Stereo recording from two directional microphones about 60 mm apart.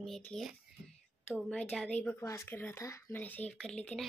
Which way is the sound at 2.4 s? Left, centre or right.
Left.